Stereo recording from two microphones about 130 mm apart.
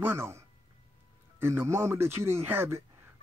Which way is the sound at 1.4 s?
20° right (ahead or behind).